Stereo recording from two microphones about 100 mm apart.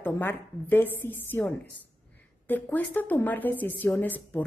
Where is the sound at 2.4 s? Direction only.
15° left (ahead or behind).